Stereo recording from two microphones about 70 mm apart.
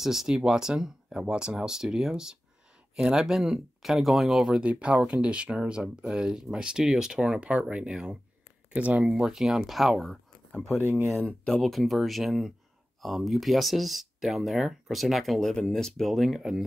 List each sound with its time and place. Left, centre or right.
0.0 s speech: centre
9.2 s speech: centre
11.2 s speech: centre